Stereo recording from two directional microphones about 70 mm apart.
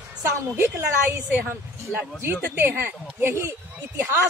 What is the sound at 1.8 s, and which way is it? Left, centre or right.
A woman's voice, right.